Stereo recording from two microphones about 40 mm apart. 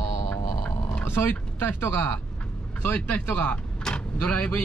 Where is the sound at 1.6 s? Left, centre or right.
Left.